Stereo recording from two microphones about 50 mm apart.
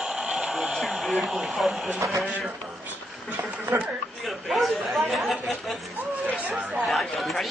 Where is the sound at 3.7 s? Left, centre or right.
Right.